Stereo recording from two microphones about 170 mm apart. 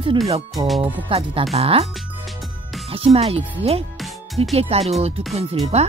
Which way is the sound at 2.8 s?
35° right (ahead or behind).